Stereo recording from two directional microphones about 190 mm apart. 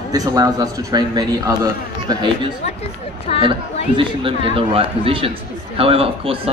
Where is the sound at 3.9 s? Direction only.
30° right (ahead or behind).